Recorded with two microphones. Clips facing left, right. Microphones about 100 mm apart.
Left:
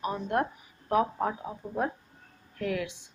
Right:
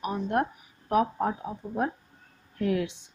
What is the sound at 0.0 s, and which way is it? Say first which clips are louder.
Speech: right 1 dB; 15° right (ahead or behind).